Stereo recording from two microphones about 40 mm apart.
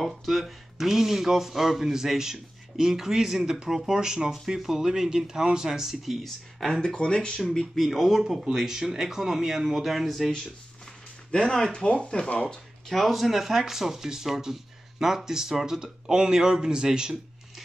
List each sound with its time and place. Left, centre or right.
0.0 s speech: centre
6.2 s speech: centre
6.8 s speech: left
7.7 s speech: centre
11.4 s speech: centre
11.7 s speech: left
12.8 s speech: centre